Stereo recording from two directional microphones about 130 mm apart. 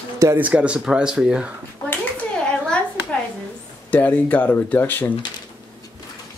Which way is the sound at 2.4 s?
10° left (ahead or behind).